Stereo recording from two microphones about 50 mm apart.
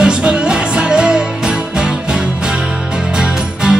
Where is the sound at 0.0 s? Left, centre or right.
Centre.